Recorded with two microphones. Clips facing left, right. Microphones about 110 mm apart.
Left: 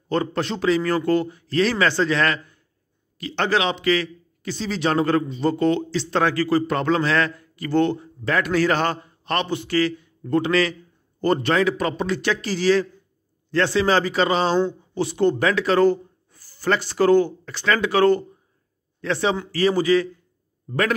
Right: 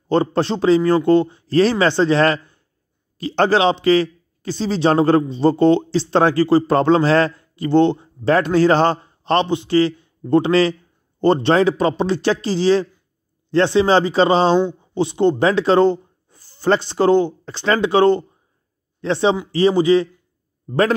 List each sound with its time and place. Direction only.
0.1 s a man's voice: 30° right (ahead or behind)